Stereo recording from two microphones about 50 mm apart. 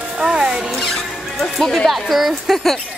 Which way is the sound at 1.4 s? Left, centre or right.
Centre.